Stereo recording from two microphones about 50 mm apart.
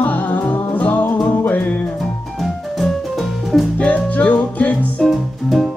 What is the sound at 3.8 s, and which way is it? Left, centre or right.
Music, left.